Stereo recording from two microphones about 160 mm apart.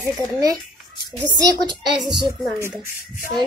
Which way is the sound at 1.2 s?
25° right (ahead or behind).